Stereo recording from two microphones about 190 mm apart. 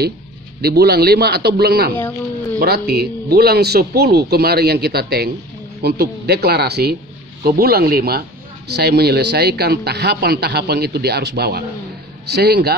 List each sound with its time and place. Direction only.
0.6 s speech: 55° right (ahead or behind)